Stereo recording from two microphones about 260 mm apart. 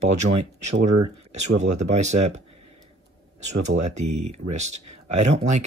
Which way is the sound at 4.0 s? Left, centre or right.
Right.